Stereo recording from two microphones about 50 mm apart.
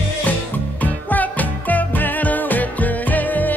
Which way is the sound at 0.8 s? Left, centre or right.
Left.